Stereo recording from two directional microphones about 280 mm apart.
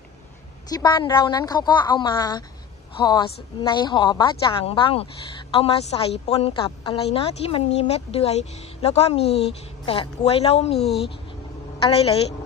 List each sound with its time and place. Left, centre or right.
0.7 s a woman's voice: centre
11.8 s a woman's voice: left